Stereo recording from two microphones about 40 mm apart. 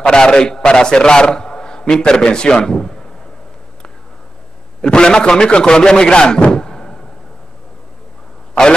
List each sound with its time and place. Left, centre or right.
0.0 s a man's voice: centre
4.8 s a man's voice: left
6.4 s a sound: centre